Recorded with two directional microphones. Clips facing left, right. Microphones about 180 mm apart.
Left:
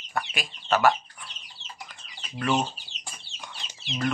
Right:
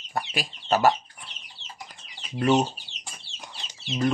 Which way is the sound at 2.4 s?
40° right (ahead or behind).